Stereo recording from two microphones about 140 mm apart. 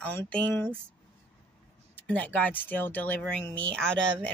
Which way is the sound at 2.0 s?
10° left (ahead or behind).